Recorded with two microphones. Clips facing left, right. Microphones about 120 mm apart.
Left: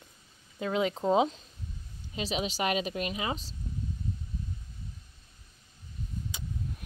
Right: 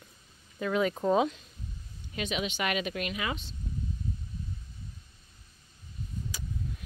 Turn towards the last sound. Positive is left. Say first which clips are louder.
# left 1 dB
turn(degrees=20)  # may be behind; listen again after turning